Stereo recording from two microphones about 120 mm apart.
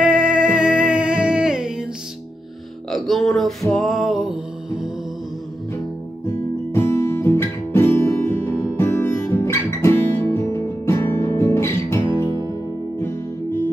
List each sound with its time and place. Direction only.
0.0 s music: 5° right (ahead or behind)
2.9 s music: centre (ahead or behind)
6.7 s music: 20° left (ahead or behind)